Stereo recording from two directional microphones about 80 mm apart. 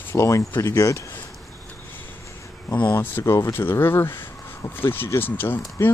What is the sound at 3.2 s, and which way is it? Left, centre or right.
Speech, left.